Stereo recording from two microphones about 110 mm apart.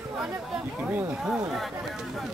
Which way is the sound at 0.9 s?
15° right (ahead or behind).